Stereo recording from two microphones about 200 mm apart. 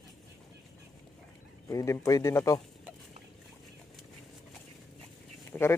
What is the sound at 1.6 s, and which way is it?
Speech, 15° left (ahead or behind).